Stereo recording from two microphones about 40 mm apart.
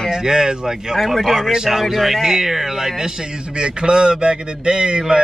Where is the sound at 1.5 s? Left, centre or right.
Centre.